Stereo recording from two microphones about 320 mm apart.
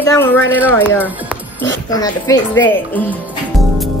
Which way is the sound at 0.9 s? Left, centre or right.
Centre.